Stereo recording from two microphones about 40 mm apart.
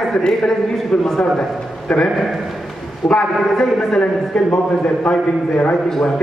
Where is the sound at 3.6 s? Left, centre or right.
Centre.